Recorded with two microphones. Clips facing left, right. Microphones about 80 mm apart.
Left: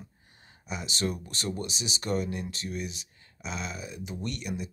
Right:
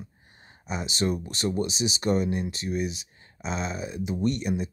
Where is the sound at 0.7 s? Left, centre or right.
Right.